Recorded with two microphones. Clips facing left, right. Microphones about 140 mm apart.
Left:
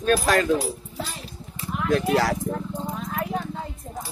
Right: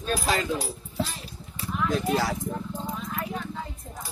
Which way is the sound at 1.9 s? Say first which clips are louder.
Left 6 dB; 70° left (ahead or behind).